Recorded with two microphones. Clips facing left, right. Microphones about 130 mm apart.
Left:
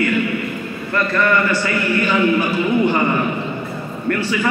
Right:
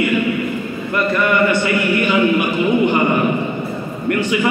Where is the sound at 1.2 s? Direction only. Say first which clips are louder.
Right 1 dB; 15° right (ahead or behind).